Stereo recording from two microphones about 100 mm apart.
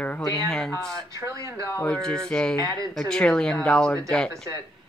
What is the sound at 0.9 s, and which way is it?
Speech, 35° right (ahead or behind).